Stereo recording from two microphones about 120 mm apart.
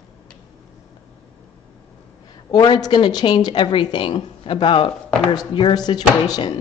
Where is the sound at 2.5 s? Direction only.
35° left (ahead or behind).